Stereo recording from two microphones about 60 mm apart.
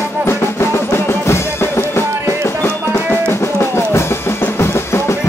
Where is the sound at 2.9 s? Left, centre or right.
Left.